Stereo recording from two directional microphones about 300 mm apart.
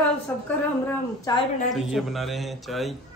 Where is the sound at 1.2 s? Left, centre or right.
Centre.